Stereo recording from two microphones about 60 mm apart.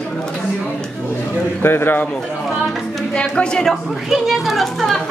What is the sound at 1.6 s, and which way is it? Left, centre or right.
Speech, left.